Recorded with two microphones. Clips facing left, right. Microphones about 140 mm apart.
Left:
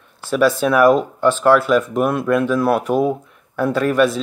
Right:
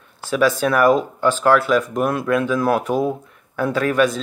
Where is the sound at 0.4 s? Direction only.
5° left (ahead or behind).